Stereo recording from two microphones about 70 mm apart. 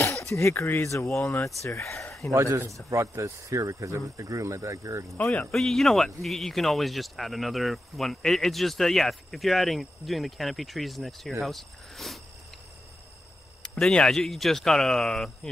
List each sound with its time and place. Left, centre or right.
0.4 s speech: left
2.3 s a man's voice: right
5.1 s speech: left
5.5 s speech: centre
13.6 s speech: centre